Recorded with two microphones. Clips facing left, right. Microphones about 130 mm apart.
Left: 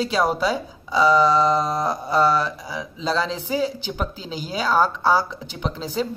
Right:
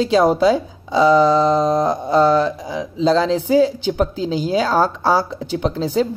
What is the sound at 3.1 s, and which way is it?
A woman's voice, 35° right (ahead or behind).